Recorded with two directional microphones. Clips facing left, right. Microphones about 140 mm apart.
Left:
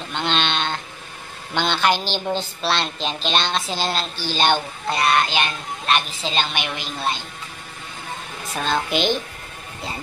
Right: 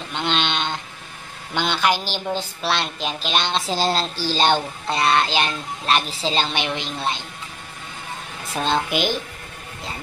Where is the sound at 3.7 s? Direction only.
35° right (ahead or behind).